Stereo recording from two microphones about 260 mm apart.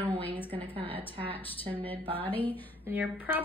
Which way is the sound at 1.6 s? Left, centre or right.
Centre.